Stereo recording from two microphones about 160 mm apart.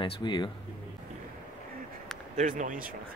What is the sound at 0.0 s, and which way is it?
Speech, 30° left (ahead or behind).